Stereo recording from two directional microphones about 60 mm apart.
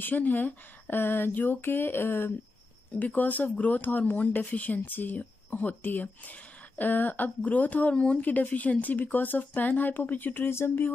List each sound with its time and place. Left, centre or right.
0.0 s speech: left
2.9 s speech: left
8.2 s speech: left